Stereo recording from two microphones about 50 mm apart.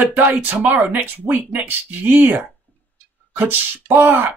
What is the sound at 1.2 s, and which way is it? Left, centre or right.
Speech, right.